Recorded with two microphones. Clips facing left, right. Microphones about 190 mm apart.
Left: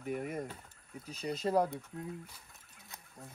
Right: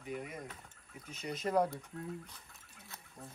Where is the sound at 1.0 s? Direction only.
35° left (ahead or behind).